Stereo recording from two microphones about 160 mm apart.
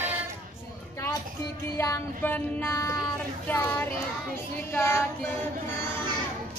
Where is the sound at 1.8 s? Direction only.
15° left (ahead or behind).